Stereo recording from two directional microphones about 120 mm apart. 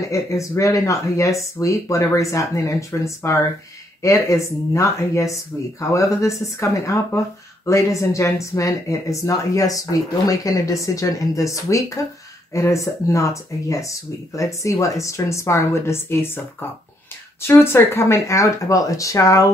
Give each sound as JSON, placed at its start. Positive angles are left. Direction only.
{"t": 0.1, "sound": "speech", "side_deg": 25}
{"t": 17.4, "sound": "speech", "side_deg": 20}